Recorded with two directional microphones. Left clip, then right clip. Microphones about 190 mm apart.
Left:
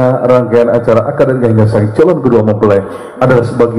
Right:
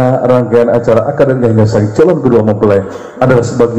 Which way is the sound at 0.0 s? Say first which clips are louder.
Left 1 dB; 20° right (ahead or behind).